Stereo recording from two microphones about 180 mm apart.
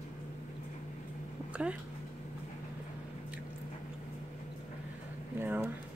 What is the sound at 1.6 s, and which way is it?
Speech, 5° right (ahead or behind).